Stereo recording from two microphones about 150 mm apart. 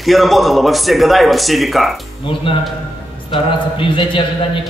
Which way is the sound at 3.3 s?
35° left (ahead or behind).